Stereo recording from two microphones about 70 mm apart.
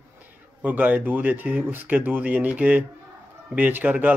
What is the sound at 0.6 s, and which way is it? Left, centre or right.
Speech, right.